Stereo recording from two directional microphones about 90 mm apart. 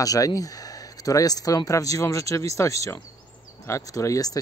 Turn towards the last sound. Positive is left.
turn(degrees=40)  # may be behind; listen again after turning